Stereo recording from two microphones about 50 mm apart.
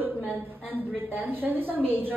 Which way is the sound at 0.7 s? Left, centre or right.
Right.